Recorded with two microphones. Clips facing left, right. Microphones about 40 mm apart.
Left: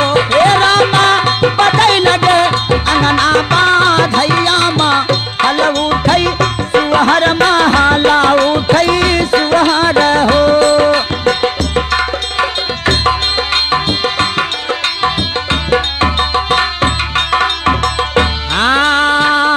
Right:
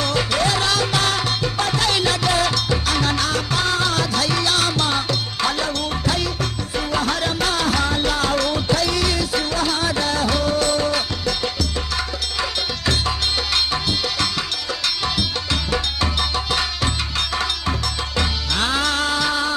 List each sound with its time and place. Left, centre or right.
0.0 s music: left
15.7 s music: left